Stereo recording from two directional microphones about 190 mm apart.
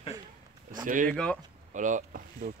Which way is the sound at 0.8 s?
45° right (ahead or behind).